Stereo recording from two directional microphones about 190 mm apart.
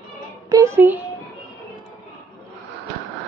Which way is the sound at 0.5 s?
15° right (ahead or behind).